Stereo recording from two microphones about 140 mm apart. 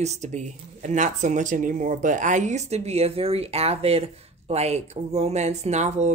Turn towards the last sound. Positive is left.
turn(degrees=-55)  # may be behind; listen again after turning